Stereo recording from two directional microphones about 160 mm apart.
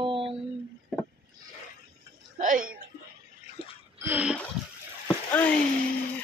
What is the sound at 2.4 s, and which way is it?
Speech, 55° right (ahead or behind).